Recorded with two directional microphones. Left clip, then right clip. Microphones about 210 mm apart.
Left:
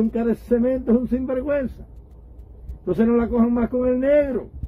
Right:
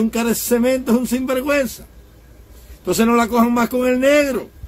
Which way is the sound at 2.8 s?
20° right (ahead or behind).